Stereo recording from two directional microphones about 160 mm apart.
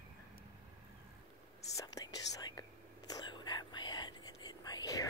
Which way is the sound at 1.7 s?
25° left (ahead or behind).